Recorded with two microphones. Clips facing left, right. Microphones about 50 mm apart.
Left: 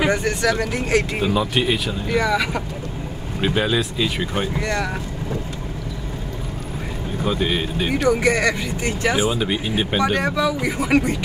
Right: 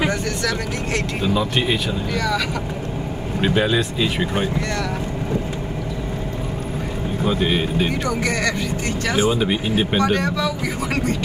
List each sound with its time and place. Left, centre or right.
0.1 s speech: centre
1.3 s speech: centre
2.1 s speech: centre
3.3 s speech: centre
4.6 s speech: left
7.2 s speech: centre
8.1 s speech: centre
9.3 s speech: centre
9.9 s speech: centre